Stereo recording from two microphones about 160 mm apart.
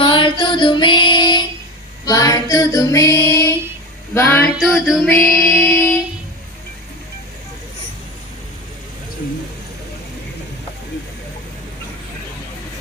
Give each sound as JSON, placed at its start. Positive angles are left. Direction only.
{"t": 0.0, "sound": "female singing", "side_deg": 30}
{"t": 4.1, "sound": "a sound", "side_deg": 10}
{"t": 4.6, "sound": "music", "side_deg": 5}